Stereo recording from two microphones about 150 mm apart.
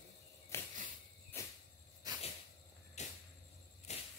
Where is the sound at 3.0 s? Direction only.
50° left (ahead or behind).